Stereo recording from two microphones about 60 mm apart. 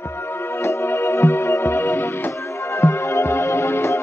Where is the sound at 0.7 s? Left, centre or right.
Left.